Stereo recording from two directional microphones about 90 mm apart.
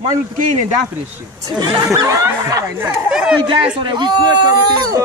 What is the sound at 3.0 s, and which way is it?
Speech, 10° right (ahead or behind).